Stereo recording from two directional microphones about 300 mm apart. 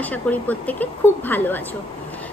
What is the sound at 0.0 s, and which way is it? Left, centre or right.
A woman's voice, centre.